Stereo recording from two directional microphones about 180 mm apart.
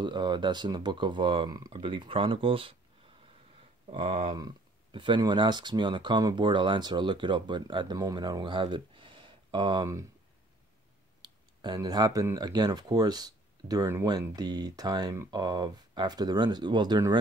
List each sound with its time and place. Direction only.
0.0 s speech: 25° right (ahead or behind)
3.9 s speech: 30° right (ahead or behind)
11.2 s speech: 25° right (ahead or behind)